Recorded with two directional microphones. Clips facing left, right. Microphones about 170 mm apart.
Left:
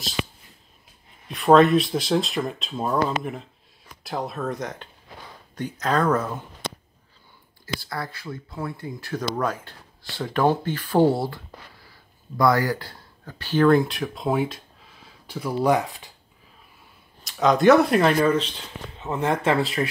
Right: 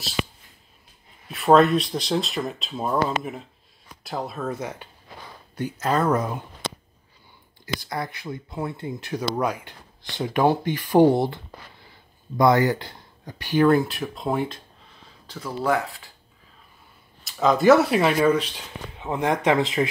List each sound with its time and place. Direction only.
1.3 s speech: centre (ahead or behind)
7.6 s speech: 20° right (ahead or behind); by 14.6 s centre (ahead or behind)
15.2 s speech: 10° left (ahead or behind)
17.2 s speech: centre (ahead or behind); by 19.9 s 20° right (ahead or behind)